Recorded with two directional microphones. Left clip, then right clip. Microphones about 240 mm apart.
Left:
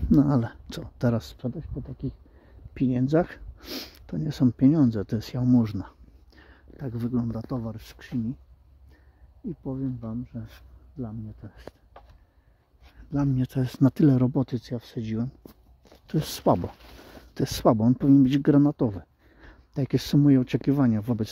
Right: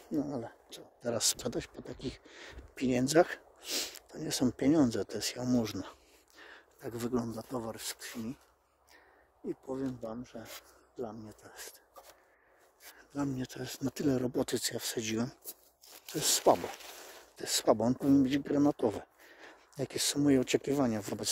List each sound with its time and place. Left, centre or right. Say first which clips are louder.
0.1 s speech: left 13 dB; left
1.4 s speech: left 1 dB; right
2.7 s speech: left 4 dB; centre
9.8 s speech: left 4 dB; centre
13.1 s speech: left 9 dB; centre
14.3 s speech: left 3 dB; centre
16.2 s speech: left 3 dB; centre
18.6 s speech: left 5 dB; centre